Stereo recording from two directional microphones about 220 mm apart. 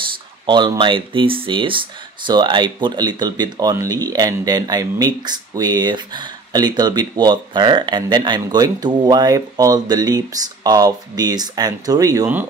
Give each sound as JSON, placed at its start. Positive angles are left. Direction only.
{"t": 0.5, "sound": "speech", "side_deg": -20}